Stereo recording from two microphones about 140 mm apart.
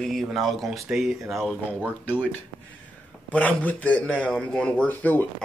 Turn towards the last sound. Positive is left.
turn(degrees=10)  # may be behind; listen again after turning